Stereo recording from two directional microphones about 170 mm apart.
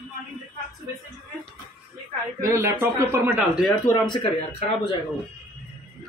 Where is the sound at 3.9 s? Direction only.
25° left (ahead or behind).